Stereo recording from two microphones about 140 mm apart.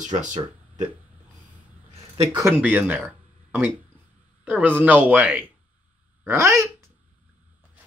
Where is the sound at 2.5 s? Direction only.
10° right (ahead or behind).